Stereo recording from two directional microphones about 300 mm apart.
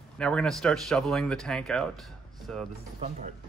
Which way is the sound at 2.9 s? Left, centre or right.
Right.